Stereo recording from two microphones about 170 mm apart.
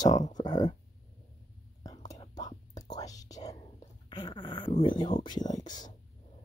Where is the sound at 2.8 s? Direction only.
20° left (ahead or behind).